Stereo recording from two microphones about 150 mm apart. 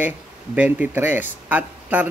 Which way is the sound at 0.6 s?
10° right (ahead or behind).